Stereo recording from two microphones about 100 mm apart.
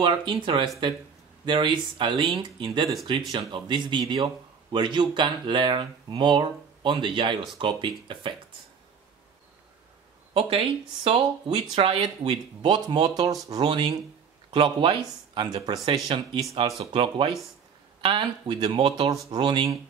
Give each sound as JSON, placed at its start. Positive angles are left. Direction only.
{"t": 0.0, "sound": "speech", "side_deg": -55}
{"t": 10.3, "sound": "speech", "side_deg": -70}
{"t": 12.6, "sound": "speech", "side_deg": -45}
{"t": 16.5, "sound": "speech", "side_deg": -85}
{"t": 16.9, "sound": "speech", "side_deg": -55}